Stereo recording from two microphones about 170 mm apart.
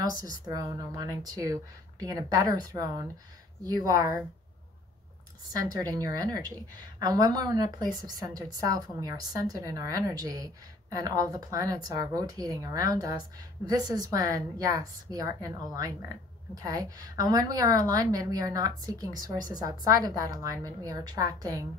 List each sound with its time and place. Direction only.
0.1 s a woman's voice: 20° right (ahead or behind)
5.6 s a woman's voice: 20° right (ahead or behind)